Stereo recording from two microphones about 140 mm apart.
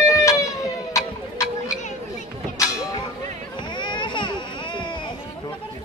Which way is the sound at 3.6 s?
35° left (ahead or behind).